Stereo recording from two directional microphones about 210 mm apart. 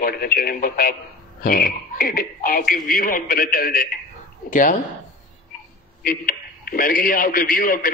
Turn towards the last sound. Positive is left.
turn(degrees=45)  # may be behind; listen again after turning